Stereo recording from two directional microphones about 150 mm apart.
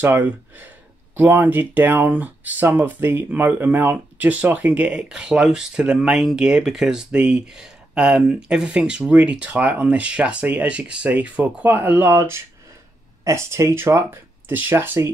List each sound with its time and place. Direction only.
0.0 s speech: 15° right (ahead or behind)